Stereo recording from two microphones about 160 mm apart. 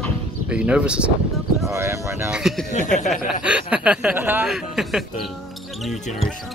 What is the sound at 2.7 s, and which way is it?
Chuckle, 50° left (ahead or behind).